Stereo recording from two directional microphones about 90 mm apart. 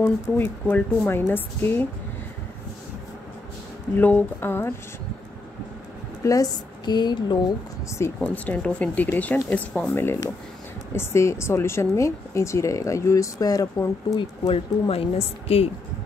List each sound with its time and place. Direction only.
0.0 s speech: 20° left (ahead or behind)
3.9 s speech: 20° left (ahead or behind)
6.2 s speech: 45° left (ahead or behind)
8.2 s speech: 15° left (ahead or behind); by 14.2 s 40° left (ahead or behind)
14.4 s a woman's voice: 90° left